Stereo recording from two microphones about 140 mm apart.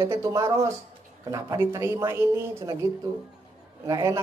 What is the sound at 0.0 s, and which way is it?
A man's voice, 25° right (ahead or behind).